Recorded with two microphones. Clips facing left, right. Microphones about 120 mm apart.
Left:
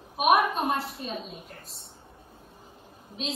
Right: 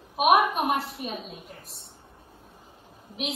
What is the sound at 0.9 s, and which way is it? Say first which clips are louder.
Speech: right 1 dB; 30° left (ahead or behind).